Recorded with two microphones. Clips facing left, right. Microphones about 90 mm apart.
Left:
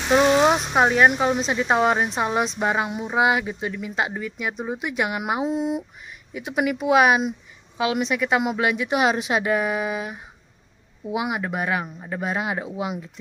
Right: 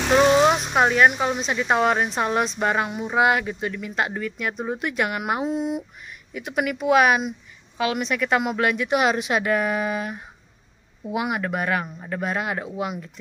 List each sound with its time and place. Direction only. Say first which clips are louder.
0.4 s a woman's voice: even; 20° left (ahead or behind)